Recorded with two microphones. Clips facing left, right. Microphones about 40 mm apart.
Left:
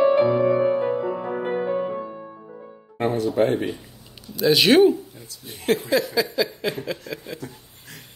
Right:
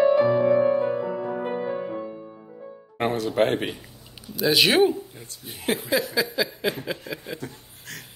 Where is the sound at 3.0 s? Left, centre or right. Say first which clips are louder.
Left 2 dB; right.